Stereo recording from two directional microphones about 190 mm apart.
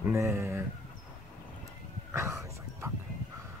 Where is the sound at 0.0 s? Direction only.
15° right (ahead or behind).